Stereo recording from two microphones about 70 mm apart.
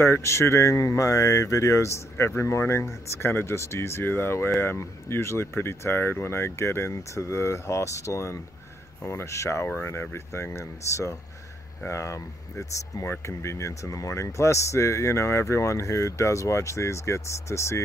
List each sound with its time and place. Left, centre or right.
0.0 s speech: left